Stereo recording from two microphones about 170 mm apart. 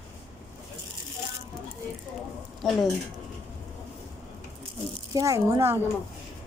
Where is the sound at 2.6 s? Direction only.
Centre (ahead or behind).